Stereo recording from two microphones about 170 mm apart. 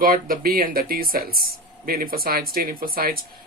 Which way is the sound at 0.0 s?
60° right (ahead or behind).